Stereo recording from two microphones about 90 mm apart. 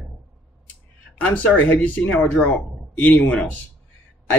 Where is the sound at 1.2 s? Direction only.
15° left (ahead or behind).